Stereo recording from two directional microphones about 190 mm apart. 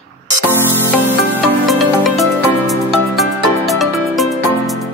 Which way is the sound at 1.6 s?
Centre (ahead or behind).